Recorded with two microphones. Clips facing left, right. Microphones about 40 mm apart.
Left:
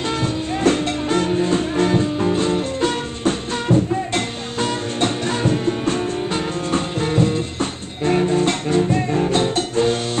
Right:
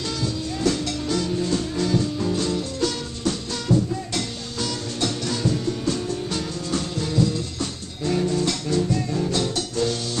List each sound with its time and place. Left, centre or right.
0.2 s music: left